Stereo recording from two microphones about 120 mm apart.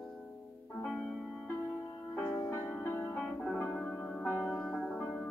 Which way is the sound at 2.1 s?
5° left (ahead or behind).